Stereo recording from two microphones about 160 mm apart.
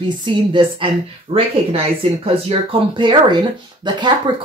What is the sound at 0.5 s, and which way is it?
Speech, 30° right (ahead or behind).